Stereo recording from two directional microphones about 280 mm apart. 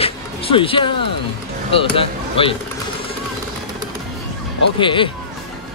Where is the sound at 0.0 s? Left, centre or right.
Centre.